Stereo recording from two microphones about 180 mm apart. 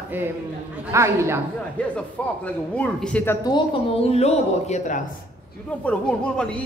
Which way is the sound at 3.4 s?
30° left (ahead or behind).